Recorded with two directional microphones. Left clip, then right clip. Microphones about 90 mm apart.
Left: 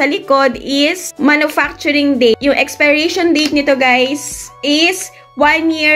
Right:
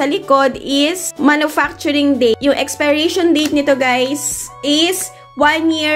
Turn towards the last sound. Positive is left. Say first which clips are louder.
# left 2 dB
turn(degrees=-30)  # may be behind; listen again after turning